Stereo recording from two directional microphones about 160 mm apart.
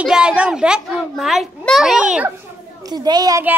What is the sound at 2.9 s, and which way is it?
Speech, 25° right (ahead or behind).